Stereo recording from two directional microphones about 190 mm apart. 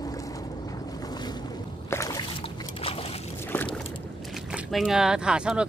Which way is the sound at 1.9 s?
15° left (ahead or behind).